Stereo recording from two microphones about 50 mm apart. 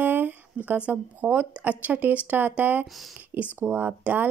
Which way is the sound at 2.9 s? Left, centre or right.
Centre.